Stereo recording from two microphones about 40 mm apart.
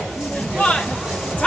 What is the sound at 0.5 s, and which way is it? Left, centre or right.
Speech, left.